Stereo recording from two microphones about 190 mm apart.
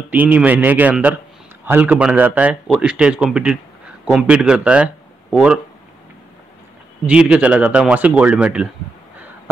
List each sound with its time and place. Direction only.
0.1 s speech: 10° right (ahead or behind)
7.1 s speech: 5° right (ahead or behind)